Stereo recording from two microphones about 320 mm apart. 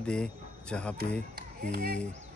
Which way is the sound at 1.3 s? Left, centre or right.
Right.